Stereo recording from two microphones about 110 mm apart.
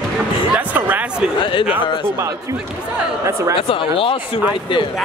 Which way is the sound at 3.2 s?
30° right (ahead or behind).